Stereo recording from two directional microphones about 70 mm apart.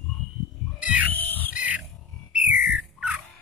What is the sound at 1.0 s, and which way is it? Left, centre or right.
Music, left.